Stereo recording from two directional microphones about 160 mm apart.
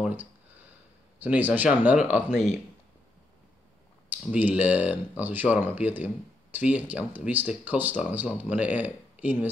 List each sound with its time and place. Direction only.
0.0 s speech: 10° right (ahead or behind)
2.3 s speech: 50° left (ahead or behind)
4.1 s speech: 10° right (ahead or behind)